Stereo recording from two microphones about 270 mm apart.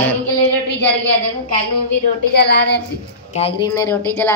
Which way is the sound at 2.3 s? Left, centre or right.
Left.